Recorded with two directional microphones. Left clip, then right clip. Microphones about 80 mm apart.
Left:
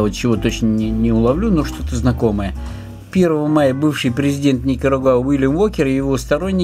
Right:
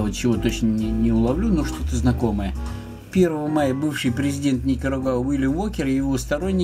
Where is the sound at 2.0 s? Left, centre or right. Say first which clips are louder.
Left 6 dB; left.